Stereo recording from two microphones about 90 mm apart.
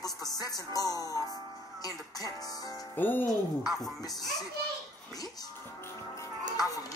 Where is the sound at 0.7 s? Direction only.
45° left (ahead or behind).